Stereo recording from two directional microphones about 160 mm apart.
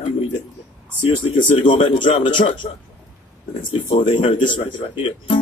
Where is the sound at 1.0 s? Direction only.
30° left (ahead or behind).